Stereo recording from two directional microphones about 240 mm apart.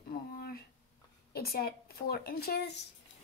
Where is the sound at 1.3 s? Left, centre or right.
Left.